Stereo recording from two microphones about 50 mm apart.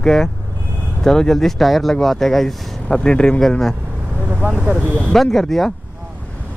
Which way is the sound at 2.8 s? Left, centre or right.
Centre.